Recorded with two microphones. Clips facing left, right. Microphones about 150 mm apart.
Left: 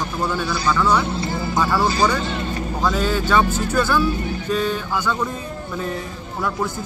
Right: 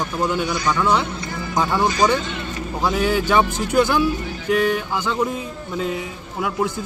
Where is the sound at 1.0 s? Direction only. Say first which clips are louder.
Left 4 dB; 30° left (ahead or behind).